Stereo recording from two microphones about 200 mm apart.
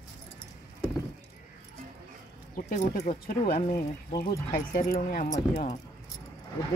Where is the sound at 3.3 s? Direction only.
45° left (ahead or behind).